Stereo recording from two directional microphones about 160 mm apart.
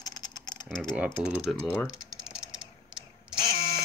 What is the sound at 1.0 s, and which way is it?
Speech, 10° right (ahead or behind).